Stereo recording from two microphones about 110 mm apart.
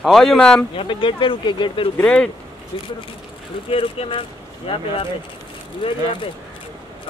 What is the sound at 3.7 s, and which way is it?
Speech, 60° left (ahead or behind).